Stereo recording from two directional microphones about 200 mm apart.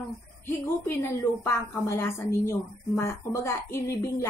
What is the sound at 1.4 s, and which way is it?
A woman's voice, 10° left (ahead or behind).